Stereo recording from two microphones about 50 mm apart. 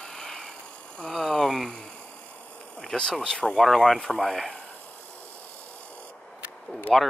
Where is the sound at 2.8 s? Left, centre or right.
Centre.